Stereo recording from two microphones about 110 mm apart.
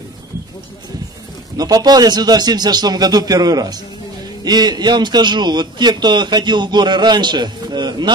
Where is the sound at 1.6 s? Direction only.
35° right (ahead or behind).